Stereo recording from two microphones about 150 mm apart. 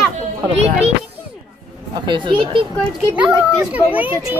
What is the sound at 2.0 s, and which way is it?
Speech, 35° right (ahead or behind).